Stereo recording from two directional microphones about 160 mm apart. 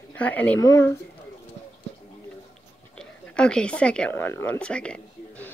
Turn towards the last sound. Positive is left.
turn(degrees=5)  # may be behind; listen again after turning